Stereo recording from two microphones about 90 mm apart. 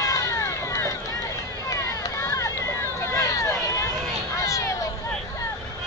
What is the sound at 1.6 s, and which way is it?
Run, 40° left (ahead or behind).